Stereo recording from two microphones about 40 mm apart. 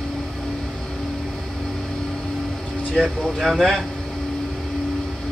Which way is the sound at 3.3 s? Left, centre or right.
Centre.